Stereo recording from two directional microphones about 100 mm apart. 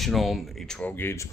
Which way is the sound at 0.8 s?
25° left (ahead or behind).